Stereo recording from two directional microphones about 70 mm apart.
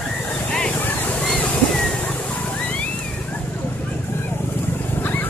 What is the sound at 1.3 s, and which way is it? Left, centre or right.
Water, centre.